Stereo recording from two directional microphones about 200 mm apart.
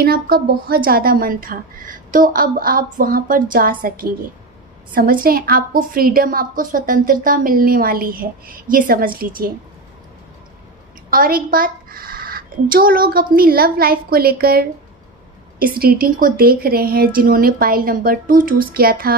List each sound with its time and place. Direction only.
0.0 s a woman's voice: 50° right (ahead or behind)
11.1 s a woman's voice: 45° right (ahead or behind)
15.8 s a woman's voice: 45° right (ahead or behind)